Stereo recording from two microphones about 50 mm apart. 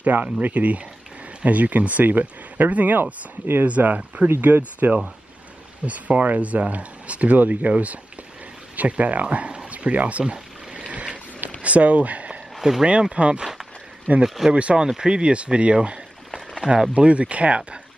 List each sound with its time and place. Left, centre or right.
0.0 s speech: right
3.6 s speech: right
10.2 s a sound: centre
11.6 s speech: right
12.5 s a sound: centre
13.1 s speech: right
14.2 s speech: centre
14.5 s speech: right